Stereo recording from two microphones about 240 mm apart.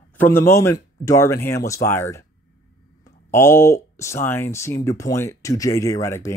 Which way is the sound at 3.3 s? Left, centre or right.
Centre.